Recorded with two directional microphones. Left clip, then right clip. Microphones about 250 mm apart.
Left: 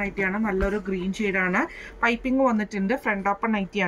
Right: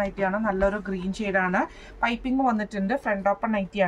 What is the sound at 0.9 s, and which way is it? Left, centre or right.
A woman's voice, centre.